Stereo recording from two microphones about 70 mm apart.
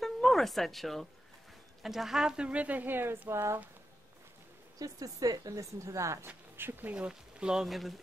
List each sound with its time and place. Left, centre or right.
0.0 s a sound: centre
1.8 s speech: centre; by 3.5 s right
4.7 s a woman's voice: right
6.2 s speech: right; by 7.9 s centre